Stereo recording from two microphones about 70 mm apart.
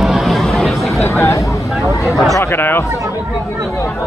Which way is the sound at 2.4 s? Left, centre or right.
Left.